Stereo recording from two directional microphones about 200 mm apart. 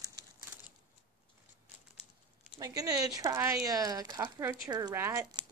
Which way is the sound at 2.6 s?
20° right (ahead or behind).